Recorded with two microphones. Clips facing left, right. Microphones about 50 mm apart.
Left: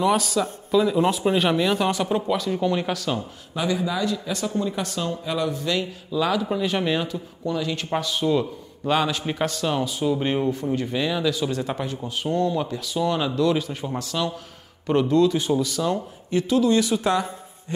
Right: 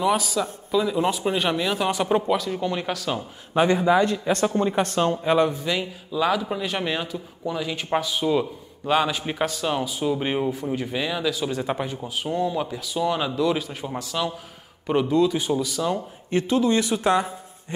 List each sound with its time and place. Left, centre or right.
0.0 s a man's voice: centre
1.9 s speech: centre
2.3 s a man's voice: centre
3.5 s speech: right
5.5 s speech: centre
16.3 s a man's voice: right